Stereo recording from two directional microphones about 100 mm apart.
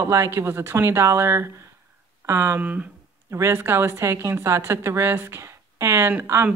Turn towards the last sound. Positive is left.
turn(degrees=-20)  # may be behind; listen again after turning